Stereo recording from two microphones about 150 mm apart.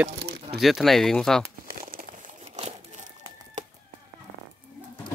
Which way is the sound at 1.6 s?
65° right (ahead or behind).